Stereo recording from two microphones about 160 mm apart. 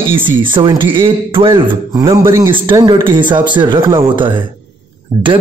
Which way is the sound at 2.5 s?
30° right (ahead or behind).